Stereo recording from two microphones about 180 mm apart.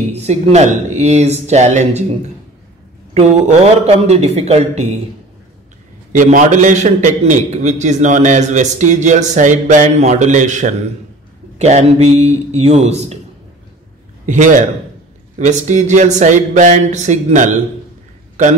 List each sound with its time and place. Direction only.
0.1 s speech: 35° right (ahead or behind)
3.2 s speech: 35° right (ahead or behind)
6.1 s a man's voice: 45° right (ahead or behind)
14.2 s a man's voice: 45° right (ahead or behind)